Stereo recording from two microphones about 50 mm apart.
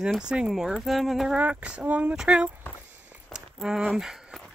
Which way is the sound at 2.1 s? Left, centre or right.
Centre.